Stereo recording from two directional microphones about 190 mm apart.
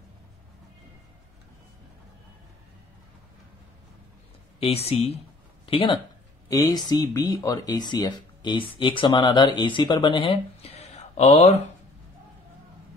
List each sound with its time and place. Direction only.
4.6 s speech: 30° left (ahead or behind)